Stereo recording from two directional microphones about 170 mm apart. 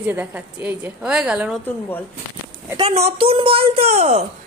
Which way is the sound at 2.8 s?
35° right (ahead or behind).